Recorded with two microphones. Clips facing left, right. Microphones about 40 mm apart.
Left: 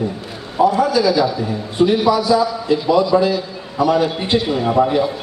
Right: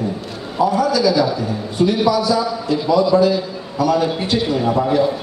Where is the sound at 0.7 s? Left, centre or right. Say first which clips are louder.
Left 1 dB; left.